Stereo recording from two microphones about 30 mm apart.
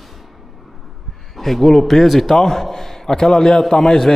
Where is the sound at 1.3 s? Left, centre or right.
Centre.